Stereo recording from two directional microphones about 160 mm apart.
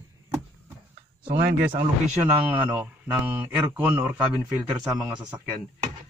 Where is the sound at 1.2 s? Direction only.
30° right (ahead or behind).